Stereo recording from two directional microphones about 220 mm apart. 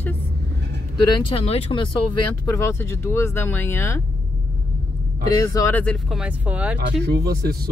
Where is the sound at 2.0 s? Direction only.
90° left.